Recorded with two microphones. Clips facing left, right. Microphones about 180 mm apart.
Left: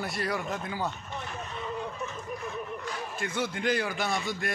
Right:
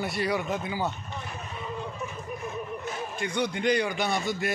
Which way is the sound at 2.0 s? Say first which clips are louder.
Right 1 dB; 20° right (ahead or behind).